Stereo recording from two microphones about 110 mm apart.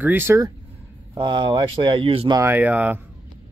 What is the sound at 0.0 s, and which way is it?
Speech, 20° right (ahead or behind).